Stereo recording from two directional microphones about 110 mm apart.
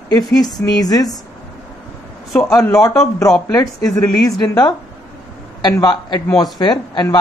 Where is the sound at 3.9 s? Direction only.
35° left (ahead or behind).